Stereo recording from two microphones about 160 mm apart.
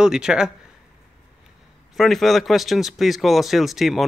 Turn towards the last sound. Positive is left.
turn(degrees=0)  # may be behind; listen again after turning